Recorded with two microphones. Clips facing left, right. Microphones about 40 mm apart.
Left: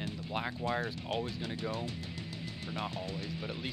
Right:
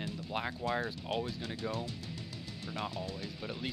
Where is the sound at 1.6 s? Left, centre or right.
Left.